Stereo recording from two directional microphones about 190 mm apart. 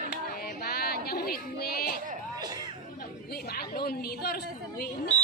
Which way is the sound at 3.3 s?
55° left (ahead or behind).